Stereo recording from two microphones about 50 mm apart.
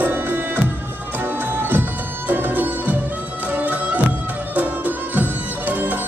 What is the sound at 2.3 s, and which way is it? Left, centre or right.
Music, right.